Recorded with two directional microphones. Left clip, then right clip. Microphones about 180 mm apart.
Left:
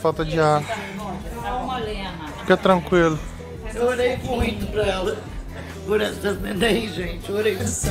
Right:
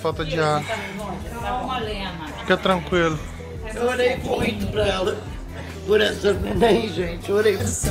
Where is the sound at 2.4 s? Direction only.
40° left (ahead or behind).